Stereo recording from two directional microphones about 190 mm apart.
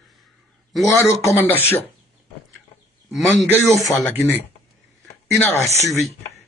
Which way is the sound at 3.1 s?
Centre (ahead or behind).